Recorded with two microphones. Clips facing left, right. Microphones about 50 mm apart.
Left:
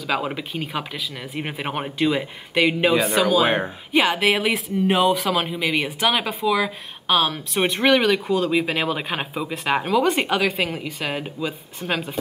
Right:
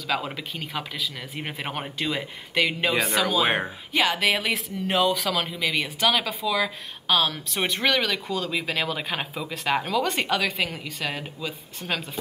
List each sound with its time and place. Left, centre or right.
0.1 s speech: centre
2.9 s speech: centre
3.4 s speech: centre
3.9 s speech: centre